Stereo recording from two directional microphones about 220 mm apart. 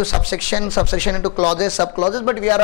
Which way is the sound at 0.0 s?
10° left (ahead or behind).